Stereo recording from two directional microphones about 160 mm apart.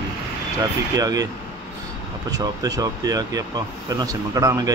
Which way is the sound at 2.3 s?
25° right (ahead or behind).